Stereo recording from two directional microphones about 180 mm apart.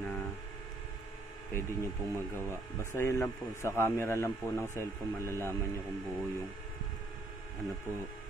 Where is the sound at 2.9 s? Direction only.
15° left (ahead or behind).